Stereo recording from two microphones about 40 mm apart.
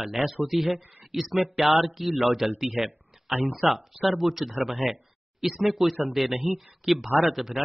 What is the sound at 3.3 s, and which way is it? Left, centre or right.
Speech, right.